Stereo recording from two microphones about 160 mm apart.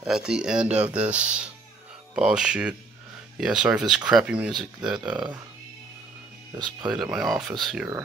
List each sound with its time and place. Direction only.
0.0 s speech: 5° right (ahead or behind)
6.5 s speech: 25° right (ahead or behind)
6.9 s speech: centre (ahead or behind)